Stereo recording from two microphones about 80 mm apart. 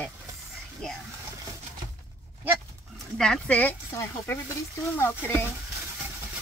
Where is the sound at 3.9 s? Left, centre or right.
Left.